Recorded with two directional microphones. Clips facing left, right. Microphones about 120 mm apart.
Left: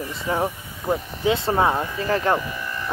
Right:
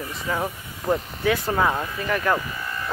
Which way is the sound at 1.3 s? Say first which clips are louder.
Left 2 dB; 25° left (ahead or behind).